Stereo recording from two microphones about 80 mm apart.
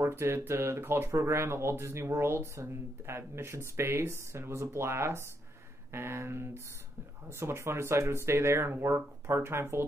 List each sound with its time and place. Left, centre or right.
0.0 s speech: right